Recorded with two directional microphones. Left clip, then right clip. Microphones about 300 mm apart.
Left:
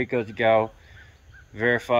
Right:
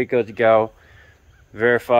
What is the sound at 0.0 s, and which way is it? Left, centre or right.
Speech, centre.